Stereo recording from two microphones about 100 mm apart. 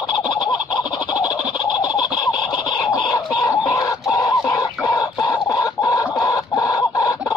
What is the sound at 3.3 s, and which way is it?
Chicken, 40° left (ahead or behind).